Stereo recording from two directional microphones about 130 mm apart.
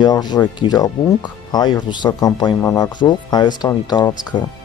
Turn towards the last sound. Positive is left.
turn(degrees=35)  # may be behind; listen again after turning